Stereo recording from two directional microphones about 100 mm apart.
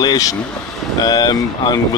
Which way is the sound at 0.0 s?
40° left (ahead or behind).